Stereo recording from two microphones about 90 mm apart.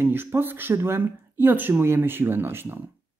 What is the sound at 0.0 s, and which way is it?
Speech, 25° right (ahead or behind).